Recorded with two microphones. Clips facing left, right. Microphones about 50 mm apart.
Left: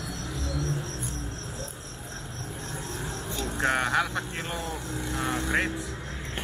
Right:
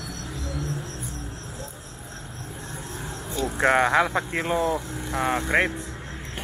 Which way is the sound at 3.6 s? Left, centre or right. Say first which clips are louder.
Right 6 dB; right.